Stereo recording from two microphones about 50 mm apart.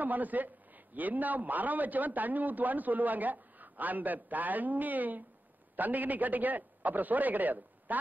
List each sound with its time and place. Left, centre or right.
0.0 s a man's voice: right